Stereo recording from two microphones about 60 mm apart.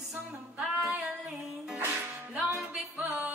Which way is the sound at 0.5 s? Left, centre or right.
Right.